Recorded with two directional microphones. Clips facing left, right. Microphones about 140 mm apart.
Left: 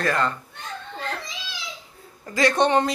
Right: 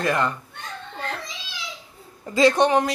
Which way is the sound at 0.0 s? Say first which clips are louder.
Right 1 dB; 15° right (ahead or behind).